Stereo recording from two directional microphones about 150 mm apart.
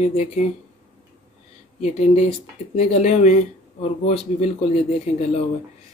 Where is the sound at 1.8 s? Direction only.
50° left (ahead or behind).